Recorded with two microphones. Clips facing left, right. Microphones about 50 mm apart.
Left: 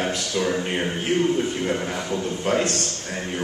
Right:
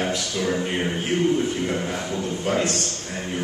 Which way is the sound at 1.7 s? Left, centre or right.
Centre.